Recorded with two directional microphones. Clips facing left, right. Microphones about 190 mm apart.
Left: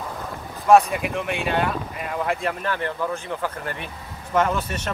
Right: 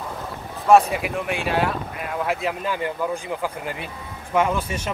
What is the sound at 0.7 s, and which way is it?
Speech, centre (ahead or behind).